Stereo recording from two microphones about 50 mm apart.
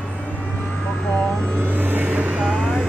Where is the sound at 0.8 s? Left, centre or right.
Centre.